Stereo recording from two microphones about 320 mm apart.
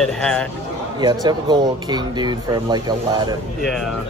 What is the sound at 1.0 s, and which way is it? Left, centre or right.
Speech, centre.